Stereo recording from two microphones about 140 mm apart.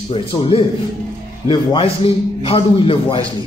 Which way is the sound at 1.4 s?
40° left (ahead or behind).